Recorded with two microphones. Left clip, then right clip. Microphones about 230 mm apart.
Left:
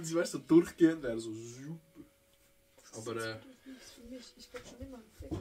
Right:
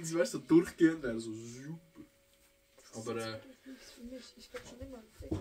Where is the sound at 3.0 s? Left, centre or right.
Centre.